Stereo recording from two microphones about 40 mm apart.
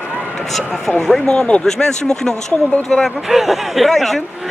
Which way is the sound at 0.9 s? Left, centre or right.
Centre.